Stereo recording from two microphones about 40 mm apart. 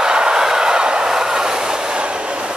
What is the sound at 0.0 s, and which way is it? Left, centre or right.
Train, centre.